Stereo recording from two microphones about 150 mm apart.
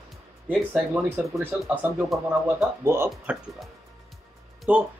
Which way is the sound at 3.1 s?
Centre (ahead or behind).